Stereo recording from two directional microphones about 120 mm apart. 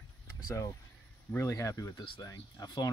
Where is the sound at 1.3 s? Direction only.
25° left (ahead or behind).